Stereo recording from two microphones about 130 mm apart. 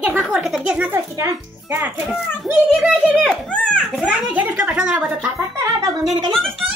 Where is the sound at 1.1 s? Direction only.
20° right (ahead or behind).